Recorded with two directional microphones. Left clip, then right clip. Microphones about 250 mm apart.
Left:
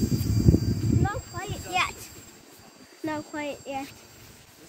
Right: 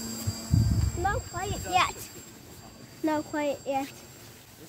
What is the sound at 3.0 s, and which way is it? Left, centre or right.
Speech, right.